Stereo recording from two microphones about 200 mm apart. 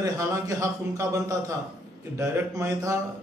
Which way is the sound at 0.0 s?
15° right (ahead or behind).